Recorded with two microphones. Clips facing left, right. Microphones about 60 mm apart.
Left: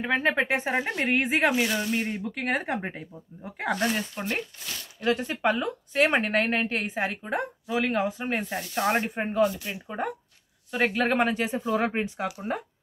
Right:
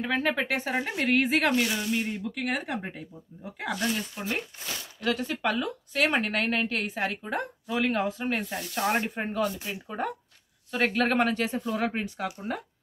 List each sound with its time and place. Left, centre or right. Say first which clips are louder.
0.0 s a woman's voice: left 3 dB; centre
0.8 s speech: left 1 dB; centre
1.1 s a woman's voice: even; left
1.5 s speech: left 1 dB; centre
1.8 s speech: left 1 dB; left
5.0 s a woman's voice: left 3 dB; left
11.9 s a woman's voice: left 3 dB; left